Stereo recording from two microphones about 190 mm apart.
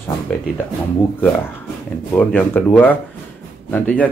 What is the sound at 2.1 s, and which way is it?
Speech, 10° left (ahead or behind).